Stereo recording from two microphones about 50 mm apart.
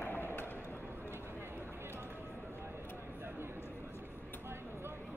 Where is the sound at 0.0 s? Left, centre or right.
Left.